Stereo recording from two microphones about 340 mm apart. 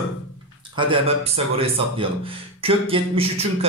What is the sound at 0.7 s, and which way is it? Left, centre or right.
A man's voice, centre.